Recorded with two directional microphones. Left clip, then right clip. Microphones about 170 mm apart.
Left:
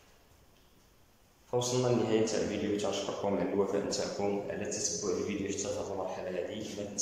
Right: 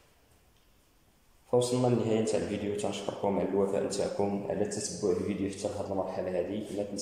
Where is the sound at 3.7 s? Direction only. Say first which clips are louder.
Right 2 dB; 20° right (ahead or behind).